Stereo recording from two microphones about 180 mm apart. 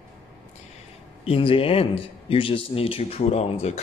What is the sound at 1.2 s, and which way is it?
Speech, 30° left (ahead or behind).